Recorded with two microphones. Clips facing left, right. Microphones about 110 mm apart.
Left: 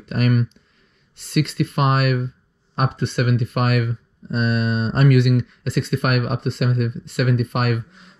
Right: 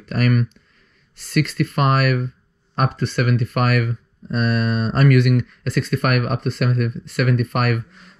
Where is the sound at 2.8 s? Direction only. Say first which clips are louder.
Right 1 dB; 20° left (ahead or behind).